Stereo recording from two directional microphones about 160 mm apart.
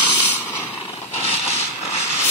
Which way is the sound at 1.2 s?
40° left (ahead or behind).